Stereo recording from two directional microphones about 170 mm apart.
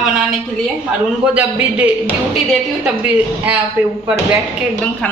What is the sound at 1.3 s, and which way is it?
A woman's voice, 10° right (ahead or behind).